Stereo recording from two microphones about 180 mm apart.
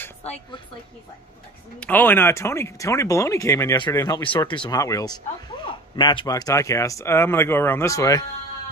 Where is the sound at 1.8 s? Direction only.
10° left (ahead or behind).